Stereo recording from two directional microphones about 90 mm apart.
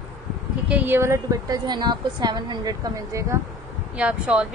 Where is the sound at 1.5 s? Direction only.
50° right (ahead or behind).